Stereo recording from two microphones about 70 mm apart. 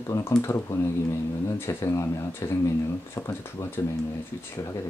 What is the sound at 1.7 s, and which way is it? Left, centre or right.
Speech, left.